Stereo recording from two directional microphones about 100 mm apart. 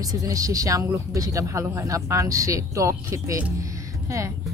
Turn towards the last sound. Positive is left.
turn(degrees=-30)  # may be behind; listen again after turning